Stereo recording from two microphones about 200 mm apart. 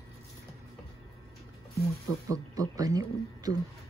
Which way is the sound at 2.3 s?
15° right (ahead or behind).